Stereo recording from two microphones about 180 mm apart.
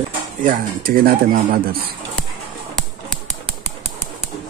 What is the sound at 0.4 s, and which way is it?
Speech, 50° right (ahead or behind).